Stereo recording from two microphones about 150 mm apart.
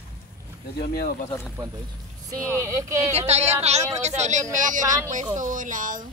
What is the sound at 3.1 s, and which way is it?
Speech, 45° right (ahead or behind).